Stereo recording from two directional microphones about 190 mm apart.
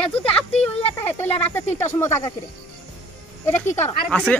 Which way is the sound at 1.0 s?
10° left (ahead or behind).